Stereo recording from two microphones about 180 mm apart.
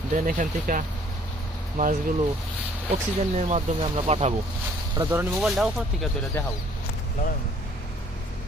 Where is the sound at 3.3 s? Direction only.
35° right (ahead or behind).